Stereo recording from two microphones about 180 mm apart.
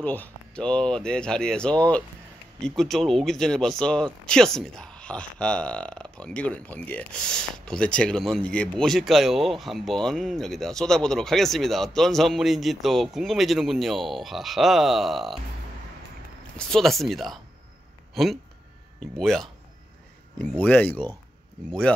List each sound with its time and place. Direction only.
0.0 s speech: 10° left (ahead or behind)
16.5 s speech: 5° left (ahead or behind)